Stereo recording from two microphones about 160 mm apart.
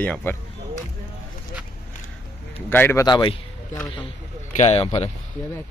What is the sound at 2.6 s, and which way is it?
Speech, 15° left (ahead or behind).